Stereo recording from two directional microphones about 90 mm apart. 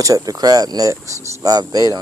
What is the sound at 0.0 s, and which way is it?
Speech, 40° right (ahead or behind).